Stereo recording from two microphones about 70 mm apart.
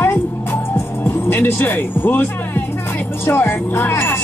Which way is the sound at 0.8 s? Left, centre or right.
Left.